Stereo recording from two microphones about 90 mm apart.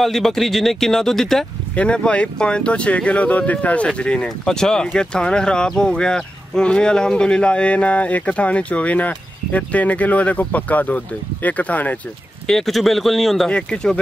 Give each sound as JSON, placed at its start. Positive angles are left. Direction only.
{"t": 0.0, "sound": "speech", "side_deg": 5}
{"t": 12.4, "sound": "speech", "side_deg": 5}